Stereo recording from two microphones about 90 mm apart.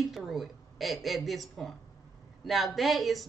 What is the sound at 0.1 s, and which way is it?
A woman's voice, centre (ahead or behind).